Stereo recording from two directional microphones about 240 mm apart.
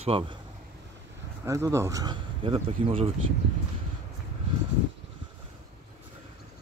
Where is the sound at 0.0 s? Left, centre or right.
Right.